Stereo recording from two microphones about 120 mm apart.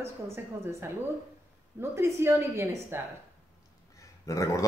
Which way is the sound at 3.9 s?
25° left (ahead or behind).